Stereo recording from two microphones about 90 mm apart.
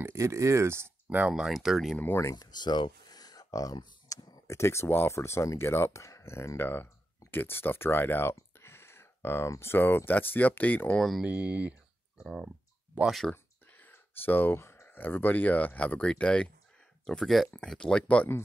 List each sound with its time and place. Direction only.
0.0 s speech: 30° right (ahead or behind)
1.2 s speech: 5° right (ahead or behind)
2.3 s a sound: 55° left (ahead or behind)
4.5 s speech: 30° left (ahead or behind)
11.0 s speech: centre (ahead or behind)
11.2 s speech: 15° right (ahead or behind)
12.2 s speech: 5° right (ahead or behind)
13.3 s speech: 20° left (ahead or behind)